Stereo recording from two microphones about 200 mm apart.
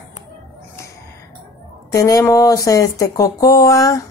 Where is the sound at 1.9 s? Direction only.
15° left (ahead or behind).